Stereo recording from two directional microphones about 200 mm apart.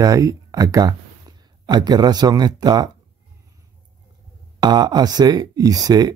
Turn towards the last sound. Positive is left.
turn(degrees=-20)  # may be behind; listen again after turning